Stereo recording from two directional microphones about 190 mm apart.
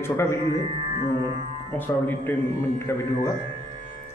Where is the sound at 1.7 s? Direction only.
10° left (ahead or behind).